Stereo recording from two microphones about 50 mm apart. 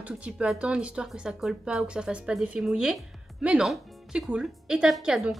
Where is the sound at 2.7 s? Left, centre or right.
Centre.